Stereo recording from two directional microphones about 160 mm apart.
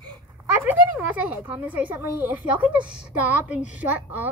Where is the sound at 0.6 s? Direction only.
10° right (ahead or behind).